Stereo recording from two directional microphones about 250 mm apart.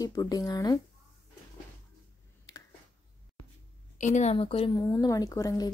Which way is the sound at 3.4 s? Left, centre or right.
Left.